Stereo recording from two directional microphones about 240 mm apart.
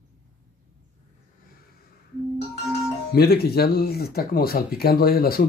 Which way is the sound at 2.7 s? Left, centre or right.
Left.